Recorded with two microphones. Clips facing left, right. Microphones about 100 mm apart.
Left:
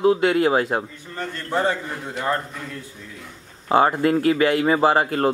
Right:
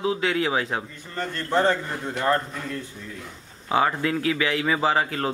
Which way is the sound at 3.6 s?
40° left (ahead or behind).